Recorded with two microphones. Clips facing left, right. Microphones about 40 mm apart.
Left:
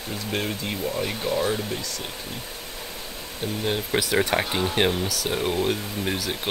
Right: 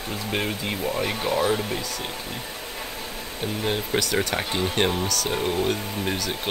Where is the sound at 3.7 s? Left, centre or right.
Centre.